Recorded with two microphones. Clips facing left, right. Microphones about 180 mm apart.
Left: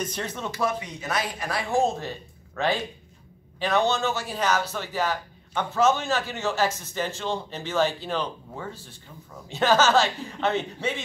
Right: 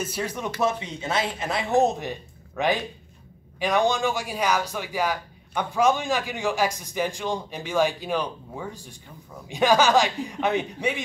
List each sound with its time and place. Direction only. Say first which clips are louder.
0.0 s a man's voice: right 2 dB; 10° right (ahead or behind)
0.6 s a man's voice: right 2 dB; 25° right (ahead or behind)